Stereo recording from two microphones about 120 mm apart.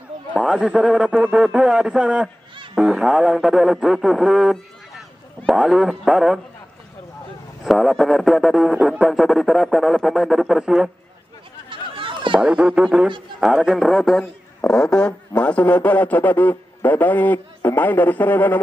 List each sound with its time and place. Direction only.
0.4 s speech: 5° right (ahead or behind)
7.6 s speech: centre (ahead or behind)
11.7 s a sound: 45° right (ahead or behind)
12.4 s a man's voice: 5° right (ahead or behind); by 18.6 s 15° left (ahead or behind)